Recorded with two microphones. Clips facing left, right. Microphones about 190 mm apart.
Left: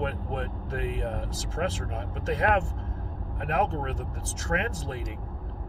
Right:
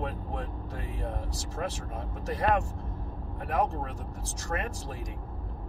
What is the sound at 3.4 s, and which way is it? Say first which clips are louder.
Speech: left 2 dB; 75° left (ahead or behind).